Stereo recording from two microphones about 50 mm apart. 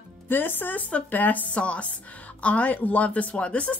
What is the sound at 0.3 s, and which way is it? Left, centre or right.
Speech, left.